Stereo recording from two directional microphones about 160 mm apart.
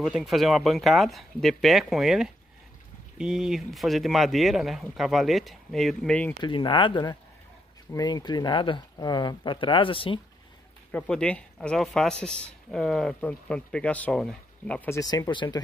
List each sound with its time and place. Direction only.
0.0 s speech: centre (ahead or behind)
6.4 s speech: 30° left (ahead or behind)
10.9 s speech: 5° left (ahead or behind)
14.9 s speech: 20° left (ahead or behind)